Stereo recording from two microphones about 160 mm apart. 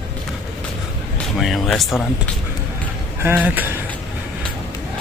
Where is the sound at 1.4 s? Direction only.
Centre (ahead or behind).